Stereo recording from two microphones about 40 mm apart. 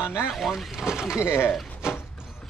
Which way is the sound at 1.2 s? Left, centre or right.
Left.